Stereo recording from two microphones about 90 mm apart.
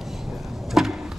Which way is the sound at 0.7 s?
5° right (ahead or behind).